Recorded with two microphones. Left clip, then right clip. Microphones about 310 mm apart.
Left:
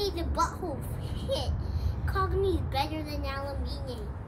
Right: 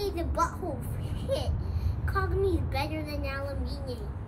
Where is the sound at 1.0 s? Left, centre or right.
Centre.